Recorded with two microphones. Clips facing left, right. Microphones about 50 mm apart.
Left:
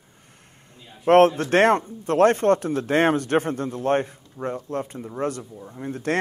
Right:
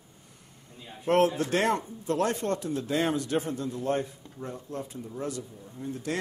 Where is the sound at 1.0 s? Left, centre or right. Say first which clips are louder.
Left 8 dB; left.